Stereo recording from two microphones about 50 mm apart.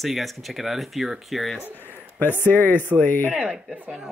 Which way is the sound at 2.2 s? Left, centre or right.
Left.